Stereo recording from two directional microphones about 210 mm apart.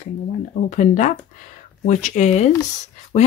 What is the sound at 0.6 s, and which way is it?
Speech, 35° left (ahead or behind).